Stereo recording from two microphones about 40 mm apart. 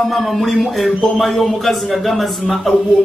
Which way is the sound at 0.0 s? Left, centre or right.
Centre.